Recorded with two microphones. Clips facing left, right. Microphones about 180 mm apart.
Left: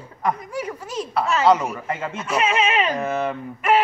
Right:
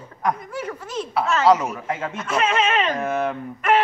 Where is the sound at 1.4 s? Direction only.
Centre (ahead or behind).